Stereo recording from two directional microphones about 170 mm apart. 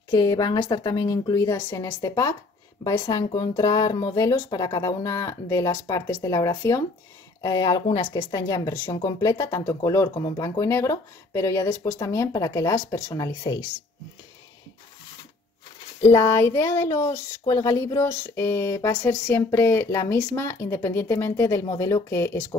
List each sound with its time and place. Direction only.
0.1 s speech: 20° left (ahead or behind)
16.1 s speech: 15° left (ahead or behind)